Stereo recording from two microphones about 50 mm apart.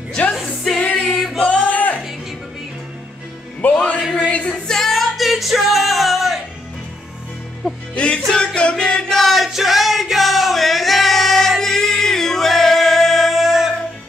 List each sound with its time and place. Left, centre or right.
0.7 s singing: centre
1.0 s choir: centre
1.7 s music: left
3.6 s music: left
4.6 s music: centre
7.9 s music: left
9.2 s music: centre